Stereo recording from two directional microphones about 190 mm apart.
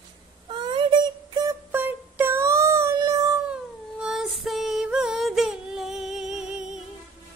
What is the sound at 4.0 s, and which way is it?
Music, centre (ahead or behind).